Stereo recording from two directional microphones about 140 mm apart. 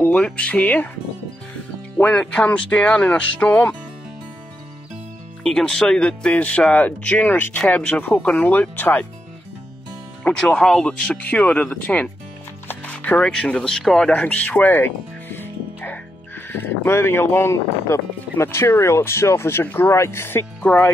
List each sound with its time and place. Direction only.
0.0 s speech: 10° left (ahead or behind)
2.0 s speech: 5° left (ahead or behind)
5.4 s speech: 5° left (ahead or behind)
10.2 s speech: 5° left (ahead or behind)